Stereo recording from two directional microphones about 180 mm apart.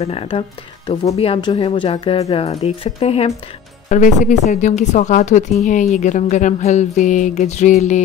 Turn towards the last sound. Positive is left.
turn(degrees=40)  # may be behind; listen again after turning